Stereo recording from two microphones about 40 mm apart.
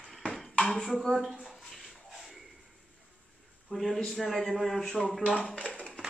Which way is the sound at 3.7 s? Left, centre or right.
Centre.